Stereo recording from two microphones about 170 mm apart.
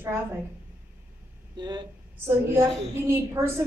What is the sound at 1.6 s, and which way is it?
Speech, 25° right (ahead or behind).